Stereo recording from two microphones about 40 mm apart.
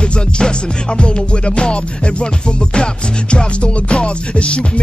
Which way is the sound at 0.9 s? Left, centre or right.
Left.